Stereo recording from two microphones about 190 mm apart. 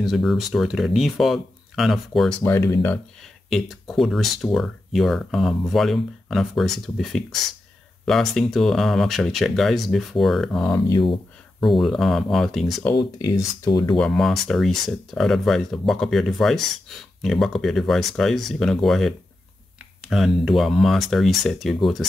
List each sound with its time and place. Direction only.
0.0 s speech: centre (ahead or behind)
2.4 s speech: 15° left (ahead or behind)
3.4 s speech: centre (ahead or behind)
10.7 s speech: 20° left (ahead or behind)
11.6 s speech: centre (ahead or behind)
13.2 s speech: 20° left (ahead or behind)
13.9 s speech: centre (ahead or behind)